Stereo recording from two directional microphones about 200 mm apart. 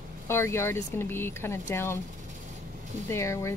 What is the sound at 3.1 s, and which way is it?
Speech, 15° left (ahead or behind).